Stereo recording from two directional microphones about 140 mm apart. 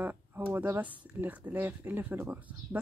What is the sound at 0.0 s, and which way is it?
Speech, 15° right (ahead or behind).